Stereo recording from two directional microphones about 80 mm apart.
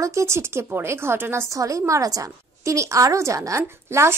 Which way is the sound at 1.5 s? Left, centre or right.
Right.